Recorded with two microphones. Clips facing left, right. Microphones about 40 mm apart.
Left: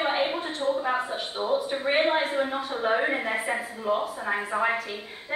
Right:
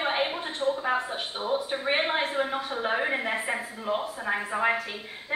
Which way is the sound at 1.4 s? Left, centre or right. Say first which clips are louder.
Left 3 dB; centre.